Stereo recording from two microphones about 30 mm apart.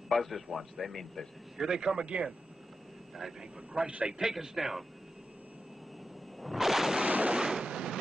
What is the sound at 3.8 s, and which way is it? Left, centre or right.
Speech, right.